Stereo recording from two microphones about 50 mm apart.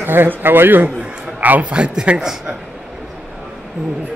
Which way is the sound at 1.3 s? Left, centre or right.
Right.